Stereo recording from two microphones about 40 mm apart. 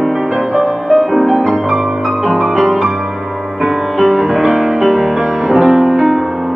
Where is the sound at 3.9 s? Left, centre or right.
Centre.